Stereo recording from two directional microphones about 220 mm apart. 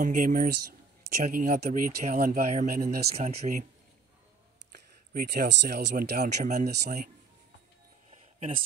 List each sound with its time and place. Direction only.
0.0 s speech: 40° right (ahead or behind)
3.2 s speech: 30° right (ahead or behind)
4.7 s speech: 45° right (ahead or behind)
6.3 s speech: 35° right (ahead or behind)
6.7 s speech: 50° right (ahead or behind)
8.1 s a sound: 30° right (ahead or behind)